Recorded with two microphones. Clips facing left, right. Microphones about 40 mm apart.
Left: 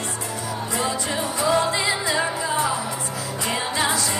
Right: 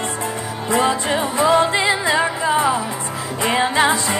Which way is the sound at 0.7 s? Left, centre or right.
Right.